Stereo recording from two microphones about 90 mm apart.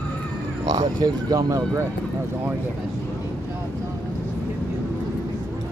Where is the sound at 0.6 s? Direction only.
45° right (ahead or behind).